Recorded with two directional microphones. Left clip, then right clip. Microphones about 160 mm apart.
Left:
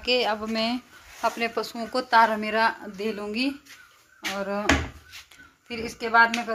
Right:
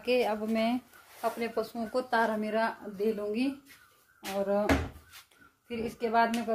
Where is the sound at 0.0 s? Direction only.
5° right (ahead or behind).